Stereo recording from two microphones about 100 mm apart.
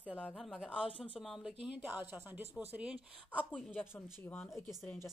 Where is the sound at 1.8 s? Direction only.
20° right (ahead or behind).